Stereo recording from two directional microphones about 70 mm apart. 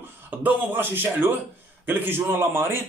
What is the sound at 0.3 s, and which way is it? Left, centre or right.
A man's voice, right.